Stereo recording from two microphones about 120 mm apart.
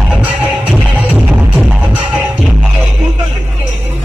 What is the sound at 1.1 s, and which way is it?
Music, 15° right (ahead or behind).